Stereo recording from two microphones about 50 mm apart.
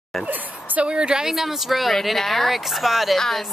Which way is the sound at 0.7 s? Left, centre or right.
Centre.